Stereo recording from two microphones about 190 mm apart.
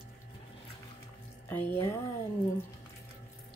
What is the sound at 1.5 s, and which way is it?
Speech, 10° left (ahead or behind).